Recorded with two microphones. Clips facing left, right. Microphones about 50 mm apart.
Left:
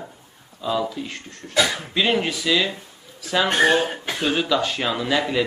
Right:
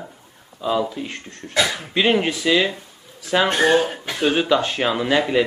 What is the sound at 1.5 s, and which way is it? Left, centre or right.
Speech, centre.